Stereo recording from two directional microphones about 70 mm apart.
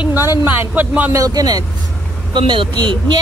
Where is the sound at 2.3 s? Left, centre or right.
Right.